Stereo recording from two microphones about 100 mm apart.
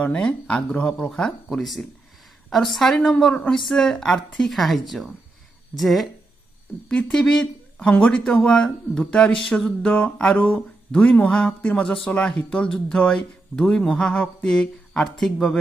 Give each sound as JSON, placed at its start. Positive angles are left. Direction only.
{"t": 0.0, "sound": "a woman's voice", "side_deg": 10}